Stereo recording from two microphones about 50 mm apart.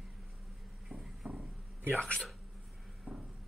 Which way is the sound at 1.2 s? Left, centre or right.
Right.